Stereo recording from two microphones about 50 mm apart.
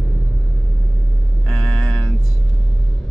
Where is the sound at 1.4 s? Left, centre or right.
Centre.